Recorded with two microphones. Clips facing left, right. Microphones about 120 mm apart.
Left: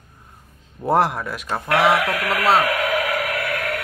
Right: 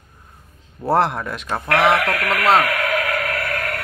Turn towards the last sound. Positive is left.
turn(degrees=5)  # may be behind; listen again after turning